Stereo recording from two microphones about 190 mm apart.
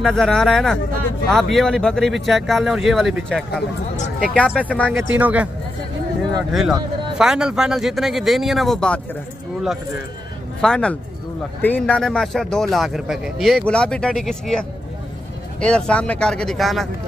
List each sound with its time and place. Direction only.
0.0 s speech: 5° left (ahead or behind)
4.9 s speech: 10° right (ahead or behind); by 9.0 s 5° left (ahead or behind)
10.6 s speech: 5° left (ahead or behind)